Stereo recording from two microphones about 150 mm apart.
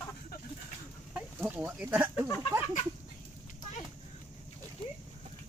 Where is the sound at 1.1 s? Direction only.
5° right (ahead or behind).